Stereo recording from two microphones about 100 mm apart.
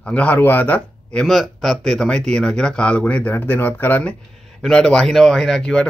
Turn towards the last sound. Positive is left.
turn(degrees=5)  # may be behind; listen again after turning